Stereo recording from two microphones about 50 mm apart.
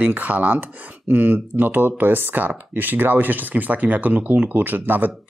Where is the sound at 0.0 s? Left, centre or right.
Right.